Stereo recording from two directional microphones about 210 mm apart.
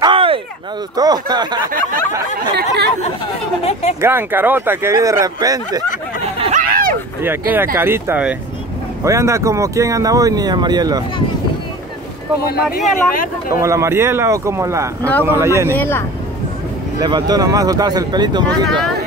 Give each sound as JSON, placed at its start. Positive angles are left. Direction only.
{"t": 0.0, "sound": "a sound", "side_deg": -25}
{"t": 0.9, "sound": "speech", "side_deg": -20}
{"t": 2.5, "sound": "speech", "side_deg": -50}
{"t": 4.0, "sound": "speech", "side_deg": -10}
{"t": 6.4, "sound": "bow-wow", "side_deg": -40}
{"t": 7.2, "sound": "speech", "side_deg": -10}
{"t": 12.8, "sound": "speech", "side_deg": 40}
{"t": 13.6, "sound": "speech", "side_deg": -15}
{"t": 15.8, "sound": "speech", "side_deg": 10}
{"t": 17.0, "sound": "speech", "side_deg": -20}
{"t": 18.7, "sound": "speech", "side_deg": 0}